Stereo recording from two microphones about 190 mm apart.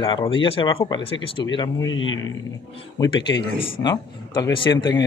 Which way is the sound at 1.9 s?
90° left.